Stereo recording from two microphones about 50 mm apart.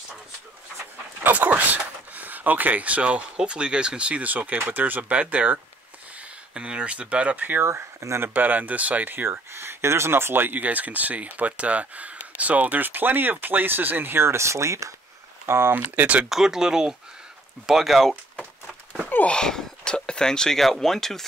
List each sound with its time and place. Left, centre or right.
1.2 s speech: right
7.6 s speech: right
8.3 s speech: right
10.6 s speech: right
15.4 s speech: right
15.7 s speech: right
16.3 s speech: centre
19.2 s speech: centre